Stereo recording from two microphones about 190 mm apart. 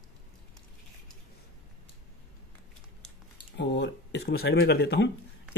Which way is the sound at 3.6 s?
65° left (ahead or behind).